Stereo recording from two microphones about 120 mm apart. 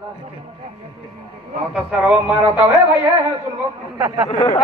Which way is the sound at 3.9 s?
30° right (ahead or behind).